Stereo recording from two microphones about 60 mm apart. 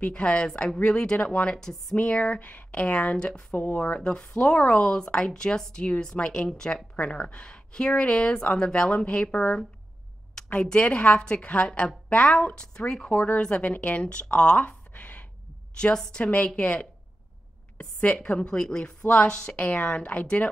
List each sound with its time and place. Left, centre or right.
0.0 s speech: centre
10.7 s speech: centre
13.1 s speech: left
14.3 s a sound: left
15.8 s speech: centre